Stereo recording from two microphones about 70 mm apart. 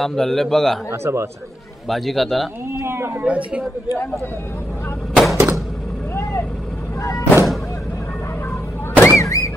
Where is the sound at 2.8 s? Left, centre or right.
Right.